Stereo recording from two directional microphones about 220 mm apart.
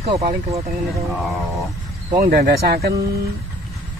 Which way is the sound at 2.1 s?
45° right (ahead or behind).